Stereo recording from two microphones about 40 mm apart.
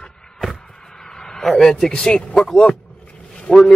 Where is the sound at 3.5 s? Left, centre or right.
Left.